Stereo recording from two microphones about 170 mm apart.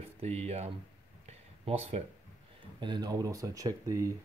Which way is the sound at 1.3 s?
35° right (ahead or behind).